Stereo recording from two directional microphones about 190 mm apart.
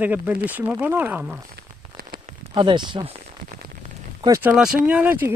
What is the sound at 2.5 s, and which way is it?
Speech, 25° right (ahead or behind).